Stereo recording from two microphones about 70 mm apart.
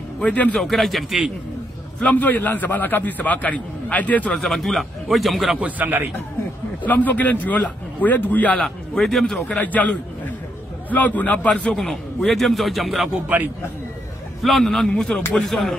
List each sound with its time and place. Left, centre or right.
0.2 s a man's voice: centre
0.6 s a man's voice: centre
2.0 s a man's voice: left
4.4 s a man's voice: centre
5.6 s a man's voice: right
6.8 s a man's voice: left
8.6 s a man's voice: centre
9.6 s a man's voice: left
10.9 s a man's voice: left; by 13.1 s centre
14.4 s a man's voice: centre